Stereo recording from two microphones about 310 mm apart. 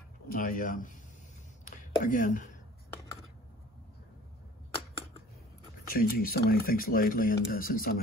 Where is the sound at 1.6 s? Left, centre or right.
Left.